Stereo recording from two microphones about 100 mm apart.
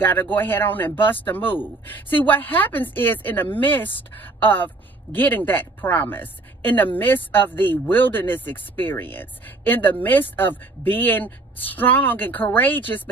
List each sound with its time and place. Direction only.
0.0 s a woman's voice: 20° left (ahead or behind)